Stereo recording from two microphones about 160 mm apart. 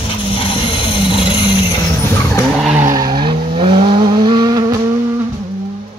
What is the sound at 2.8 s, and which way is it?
Vehicle, 20° right (ahead or behind).